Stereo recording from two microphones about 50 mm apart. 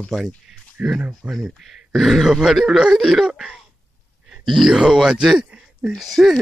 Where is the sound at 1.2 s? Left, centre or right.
Right.